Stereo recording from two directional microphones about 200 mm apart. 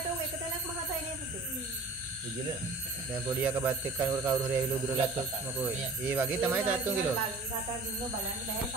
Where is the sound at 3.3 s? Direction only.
10° right (ahead or behind).